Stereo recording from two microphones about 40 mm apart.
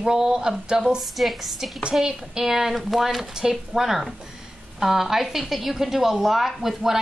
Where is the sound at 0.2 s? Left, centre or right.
Centre.